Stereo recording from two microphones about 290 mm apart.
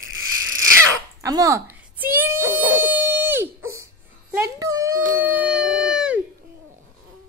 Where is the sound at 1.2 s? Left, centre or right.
Centre.